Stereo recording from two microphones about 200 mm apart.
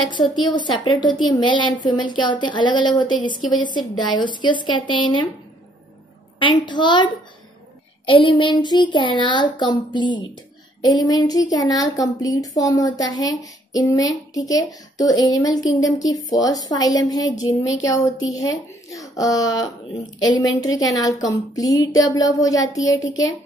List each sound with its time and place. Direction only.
0.6 s a woman's voice: 20° left (ahead or behind)
6.4 s a woman's voice: 20° left (ahead or behind)
23.0 s a child's voice: 70° left (ahead or behind)